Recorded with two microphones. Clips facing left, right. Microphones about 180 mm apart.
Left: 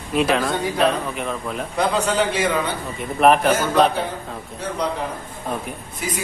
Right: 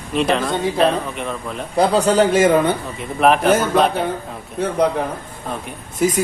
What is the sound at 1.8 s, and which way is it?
Speech, 35° right (ahead or behind).